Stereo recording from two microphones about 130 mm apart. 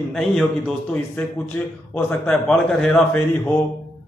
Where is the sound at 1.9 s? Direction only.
10° left (ahead or behind).